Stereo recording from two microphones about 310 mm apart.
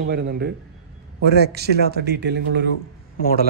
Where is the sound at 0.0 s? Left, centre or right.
Right.